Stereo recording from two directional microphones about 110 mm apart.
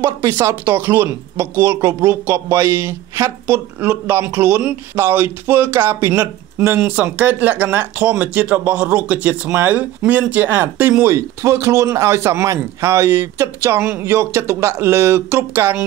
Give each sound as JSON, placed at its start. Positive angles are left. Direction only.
{"t": 0.0, "sound": "speech", "side_deg": -25}